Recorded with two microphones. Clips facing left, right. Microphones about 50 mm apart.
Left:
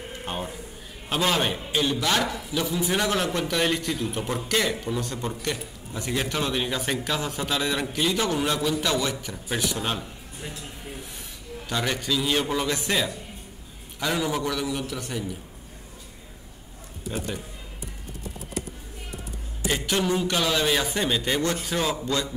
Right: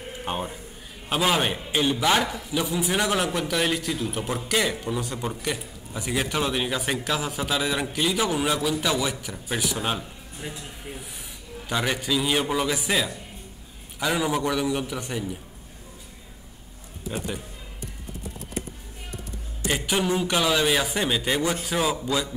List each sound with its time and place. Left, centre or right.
0.2 s a man's voice: centre
11.7 s a man's voice: centre
17.1 s a man's voice: centre
19.7 s a man's voice: centre